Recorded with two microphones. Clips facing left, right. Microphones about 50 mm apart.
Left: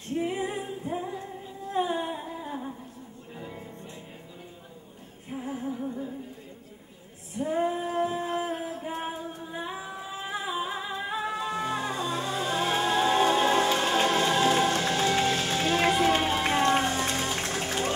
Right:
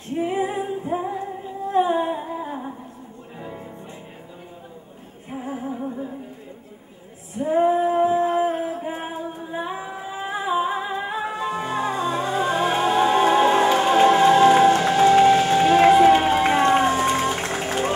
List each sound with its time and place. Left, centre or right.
0.1 s female singing: centre
1.2 s humming: centre
3.3 s music: centre
5.3 s music: centre
7.3 s female singing: centre